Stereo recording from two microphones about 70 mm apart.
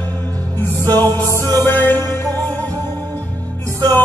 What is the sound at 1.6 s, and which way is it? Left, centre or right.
Music, left.